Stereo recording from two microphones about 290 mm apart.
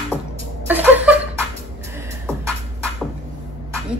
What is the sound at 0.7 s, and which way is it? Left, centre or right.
Chuckle, centre.